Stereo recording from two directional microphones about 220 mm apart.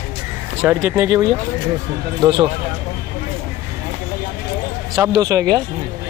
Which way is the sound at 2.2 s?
20° right (ahead or behind).